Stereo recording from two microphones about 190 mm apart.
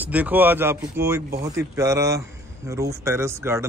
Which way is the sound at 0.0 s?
10° right (ahead or behind).